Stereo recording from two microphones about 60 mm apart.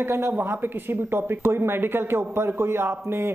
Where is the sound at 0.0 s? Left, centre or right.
Right.